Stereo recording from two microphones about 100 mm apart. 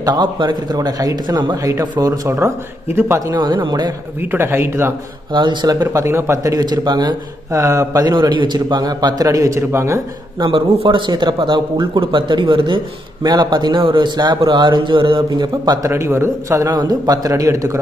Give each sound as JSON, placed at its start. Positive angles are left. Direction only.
{"t": 0.0, "sound": "a man's voice", "side_deg": -45}
{"t": 2.3, "sound": "speech", "side_deg": -25}
{"t": 3.3, "sound": "a man's voice", "side_deg": -50}
{"t": 4.2, "sound": "speech", "side_deg": -20}
{"t": 5.3, "sound": "a man's voice", "side_deg": -50}
{"t": 6.0, "sound": "a man's voice", "side_deg": -25}
{"t": 7.6, "sound": "a man's voice", "side_deg": -30}
{"t": 10.4, "sound": "a man's voice", "side_deg": -60}
{"t": 13.2, "sound": "a man's voice", "side_deg": -45}
{"t": 15.6, "sound": "a man's voice", "side_deg": -40}
{"t": 15.9, "sound": "a man's voice", "side_deg": -25}